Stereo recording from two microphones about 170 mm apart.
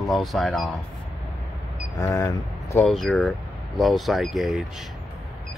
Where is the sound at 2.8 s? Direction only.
Centre (ahead or behind).